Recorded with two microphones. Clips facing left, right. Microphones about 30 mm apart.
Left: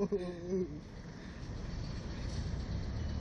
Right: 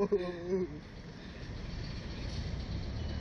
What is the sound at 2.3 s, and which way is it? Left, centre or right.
Vehicle, right.